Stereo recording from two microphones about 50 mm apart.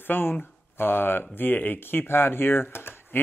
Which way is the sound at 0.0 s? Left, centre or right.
Left.